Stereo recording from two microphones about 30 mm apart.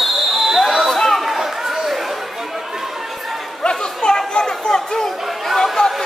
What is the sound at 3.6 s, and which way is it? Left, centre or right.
Chatter, left.